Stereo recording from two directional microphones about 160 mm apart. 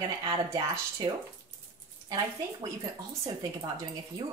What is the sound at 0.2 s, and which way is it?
Speech, 25° right (ahead or behind).